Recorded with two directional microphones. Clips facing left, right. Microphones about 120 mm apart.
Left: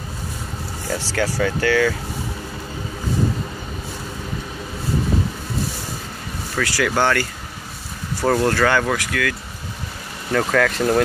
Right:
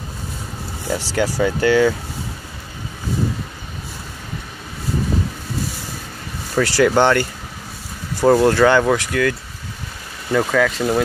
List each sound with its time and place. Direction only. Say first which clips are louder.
0.8 s speech: right 2 dB; 15° right (ahead or behind)
6.6 s speech: right 5 dB; 30° right (ahead or behind)
10.3 s speech: right 1 dB; 5° right (ahead or behind)